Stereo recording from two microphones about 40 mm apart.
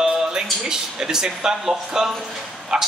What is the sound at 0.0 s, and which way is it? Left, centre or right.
A man's voice, centre.